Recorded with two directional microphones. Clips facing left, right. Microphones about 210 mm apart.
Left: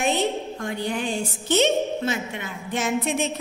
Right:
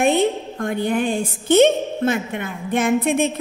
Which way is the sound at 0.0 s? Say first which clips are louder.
Right 6 dB; 55° right (ahead or behind).